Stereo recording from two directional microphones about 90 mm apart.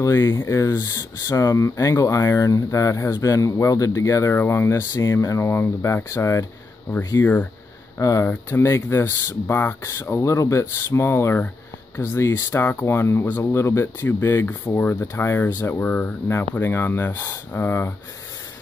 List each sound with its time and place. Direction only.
0.0 s speech: 35° left (ahead or behind)
8.0 s speech: 40° left (ahead or behind)
8.3 s speech: 25° left (ahead or behind)